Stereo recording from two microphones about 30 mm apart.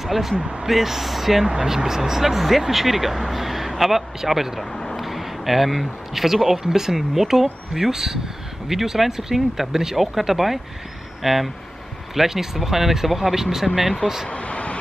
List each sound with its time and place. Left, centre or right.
0.0 s speech: centre
0.4 s speech: right
0.7 s speech: centre
1.4 s speech: right
14.3 s vehicle: left